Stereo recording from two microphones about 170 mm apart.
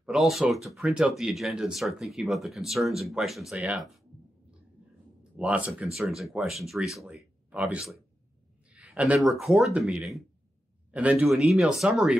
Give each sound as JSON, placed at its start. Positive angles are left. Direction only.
{"t": 0.0, "sound": "speech", "side_deg": -5}
{"t": 5.4, "sound": "speech", "side_deg": -5}